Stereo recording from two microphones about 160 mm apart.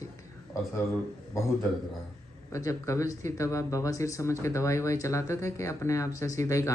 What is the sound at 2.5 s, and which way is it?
Speech, 20° left (ahead or behind).